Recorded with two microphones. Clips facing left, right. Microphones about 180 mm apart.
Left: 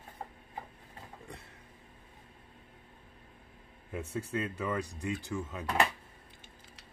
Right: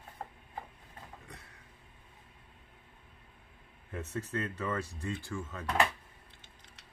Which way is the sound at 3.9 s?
10° left (ahead or behind).